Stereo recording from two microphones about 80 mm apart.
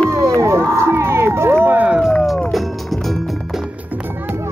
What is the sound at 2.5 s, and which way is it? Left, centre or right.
Music, centre.